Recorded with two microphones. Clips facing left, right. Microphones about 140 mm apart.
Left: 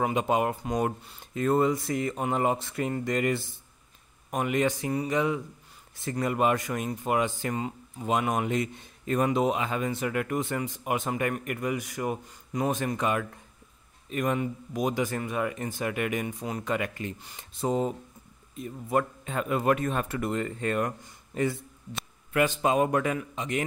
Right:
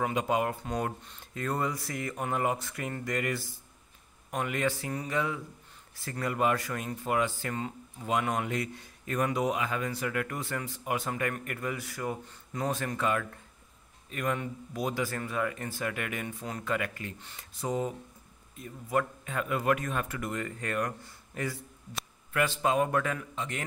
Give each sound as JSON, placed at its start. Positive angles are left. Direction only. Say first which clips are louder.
{"t": 0.0, "sound": "a man's voice", "louder": "left 3 dB", "side_deg": 20}
{"t": 17.6, "sound": "a man's voice", "louder": "left 4 dB", "side_deg": 25}